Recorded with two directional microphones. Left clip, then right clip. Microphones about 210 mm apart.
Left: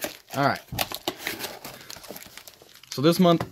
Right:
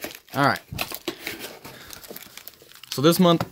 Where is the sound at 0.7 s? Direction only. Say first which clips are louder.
Left 1 dB; 55° left (ahead or behind).